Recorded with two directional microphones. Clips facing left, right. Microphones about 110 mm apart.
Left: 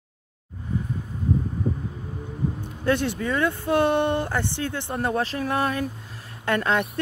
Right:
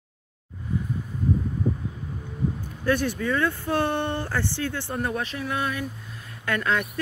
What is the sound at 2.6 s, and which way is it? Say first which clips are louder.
Speech: left 1 dB; 25° left (ahead or behind).